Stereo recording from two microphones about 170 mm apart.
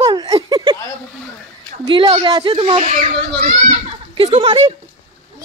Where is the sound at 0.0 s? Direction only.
25° right (ahead or behind).